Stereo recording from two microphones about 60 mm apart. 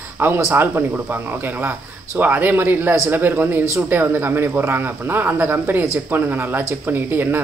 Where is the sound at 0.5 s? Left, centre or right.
Right.